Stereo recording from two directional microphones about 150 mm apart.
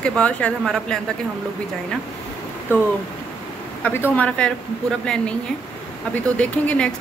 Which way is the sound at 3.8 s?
15° left (ahead or behind).